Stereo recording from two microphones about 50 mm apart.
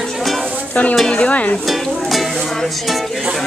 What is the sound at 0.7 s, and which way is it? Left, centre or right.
Stir, left.